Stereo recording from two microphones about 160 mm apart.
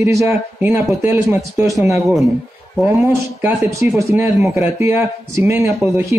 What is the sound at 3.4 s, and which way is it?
A man's voice, 15° right (ahead or behind).